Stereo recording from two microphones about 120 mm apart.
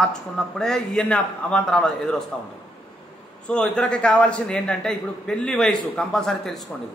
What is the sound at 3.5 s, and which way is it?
A man's voice, 10° left (ahead or behind).